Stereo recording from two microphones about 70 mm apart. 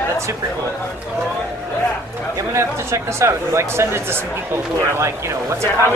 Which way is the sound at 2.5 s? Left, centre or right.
Right.